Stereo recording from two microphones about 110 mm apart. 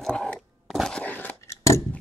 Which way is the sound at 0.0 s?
5° left (ahead or behind).